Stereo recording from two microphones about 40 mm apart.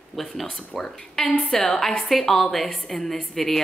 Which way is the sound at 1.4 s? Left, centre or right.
Centre.